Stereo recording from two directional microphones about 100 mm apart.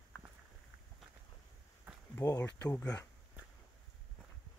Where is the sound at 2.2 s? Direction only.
35° left (ahead or behind).